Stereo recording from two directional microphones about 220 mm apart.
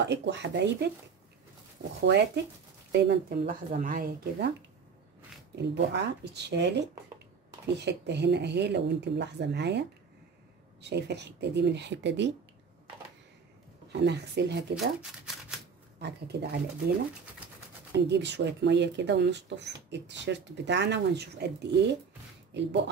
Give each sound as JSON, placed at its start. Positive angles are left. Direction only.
{"t": 0.0, "sound": "speech", "side_deg": -50}
{"t": 2.0, "sound": "speech", "side_deg": -50}
{"t": 5.6, "sound": "speech", "side_deg": -50}
{"t": 13.9, "sound": "speech", "side_deg": -50}
{"t": 16.0, "sound": "speech", "side_deg": -50}
{"t": 17.9, "sound": "speech", "side_deg": -50}